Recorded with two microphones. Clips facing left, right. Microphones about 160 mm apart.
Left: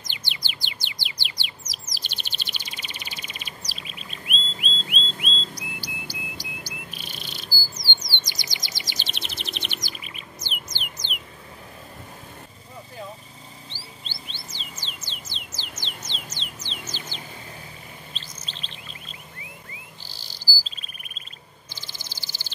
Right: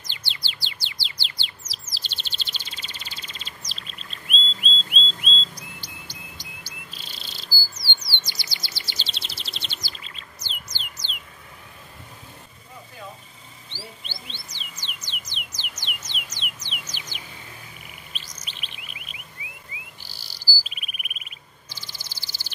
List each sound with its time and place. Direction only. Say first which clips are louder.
0.0 s bird: left 1 dB; 15° left (ahead or behind)
13.7 s mouse: right 2 dB; 15° right (ahead or behind)
15.0 s a sound: left 1 dB; 15° right (ahead or behind)
16.9 s bird: left 3 dB; 10° right (ahead or behind)
20.2 s cricket: even; 15° right (ahead or behind)
21.8 s a sound: left 3 dB; 10° right (ahead or behind)